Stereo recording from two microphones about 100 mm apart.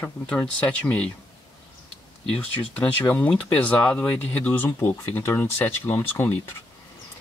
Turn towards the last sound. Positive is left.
turn(degrees=20)  # may be behind; listen again after turning